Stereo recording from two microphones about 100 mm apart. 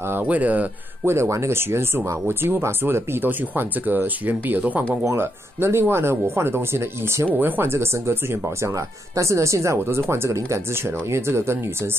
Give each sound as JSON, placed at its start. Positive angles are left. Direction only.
{"t": 0.0, "sound": "speech", "side_deg": -20}
{"t": 1.1, "sound": "speech", "side_deg": -30}